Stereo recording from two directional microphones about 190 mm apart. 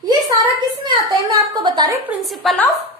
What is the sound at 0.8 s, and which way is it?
A woman's voice, 25° right (ahead or behind).